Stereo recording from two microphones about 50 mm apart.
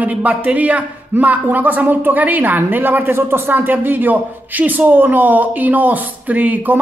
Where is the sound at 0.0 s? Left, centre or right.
Right.